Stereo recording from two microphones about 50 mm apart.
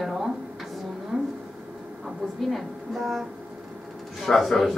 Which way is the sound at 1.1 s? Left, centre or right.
Right.